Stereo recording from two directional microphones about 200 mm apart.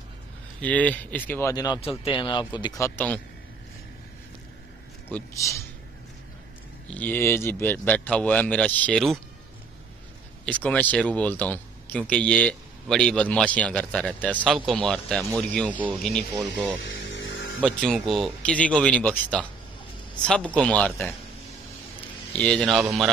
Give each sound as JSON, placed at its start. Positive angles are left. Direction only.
{"t": 0.6, "sound": "speech", "side_deg": 5}
{"t": 5.1, "sound": "speech", "side_deg": 15}
{"t": 6.9, "sound": "speech", "side_deg": 10}
{"t": 10.4, "sound": "speech", "side_deg": 5}
{"t": 15.7, "sound": "speech", "side_deg": -5}
{"t": 16.0, "sound": "speech", "side_deg": 5}
{"t": 17.2, "sound": "a sound", "side_deg": 65}
{"t": 17.6, "sound": "speech", "side_deg": 5}
{"t": 22.3, "sound": "speech", "side_deg": 5}